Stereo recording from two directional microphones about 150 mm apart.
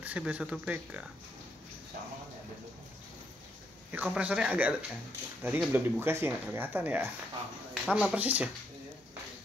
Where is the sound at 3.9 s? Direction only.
10° right (ahead or behind).